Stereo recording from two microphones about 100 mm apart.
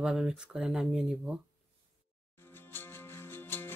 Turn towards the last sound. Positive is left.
turn(degrees=20)  # may be behind; listen again after turning